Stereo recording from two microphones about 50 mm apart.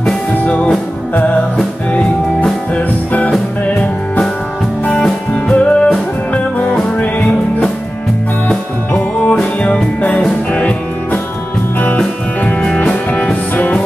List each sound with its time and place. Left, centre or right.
2.4 s music: left
5.3 s music: left
12.7 s music: left